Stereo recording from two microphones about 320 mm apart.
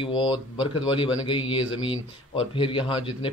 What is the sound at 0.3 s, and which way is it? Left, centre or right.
Speech, centre.